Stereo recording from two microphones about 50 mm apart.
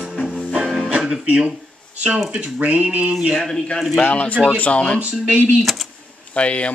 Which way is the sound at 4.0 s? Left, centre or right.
Left.